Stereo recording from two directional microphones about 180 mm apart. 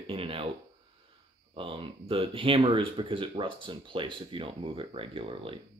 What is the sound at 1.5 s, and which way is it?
Speech, 30° right (ahead or behind).